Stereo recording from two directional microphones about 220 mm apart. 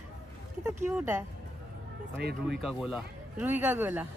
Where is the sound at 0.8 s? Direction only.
10° right (ahead or behind).